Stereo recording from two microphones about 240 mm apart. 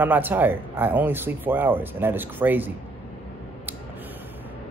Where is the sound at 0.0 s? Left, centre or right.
Centre.